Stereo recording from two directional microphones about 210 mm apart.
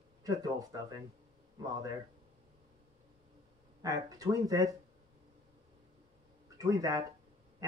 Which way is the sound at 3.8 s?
15° right (ahead or behind).